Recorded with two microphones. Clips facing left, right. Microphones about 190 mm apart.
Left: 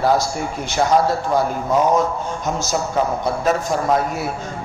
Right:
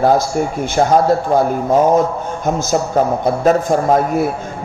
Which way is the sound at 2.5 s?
50° right (ahead or behind).